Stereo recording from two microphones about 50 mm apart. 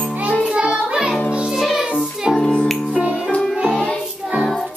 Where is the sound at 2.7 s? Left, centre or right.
Centre.